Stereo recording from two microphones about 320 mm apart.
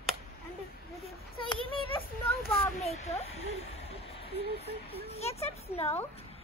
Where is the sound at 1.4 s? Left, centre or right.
Centre.